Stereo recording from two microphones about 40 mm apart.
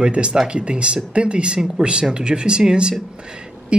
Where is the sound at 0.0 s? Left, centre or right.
Right.